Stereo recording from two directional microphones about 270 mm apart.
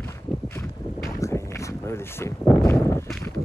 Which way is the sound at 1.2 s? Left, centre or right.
Centre.